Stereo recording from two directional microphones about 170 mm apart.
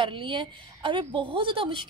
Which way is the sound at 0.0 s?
30° right (ahead or behind).